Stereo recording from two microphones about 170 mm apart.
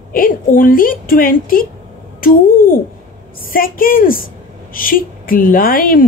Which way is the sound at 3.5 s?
55° left (ahead or behind).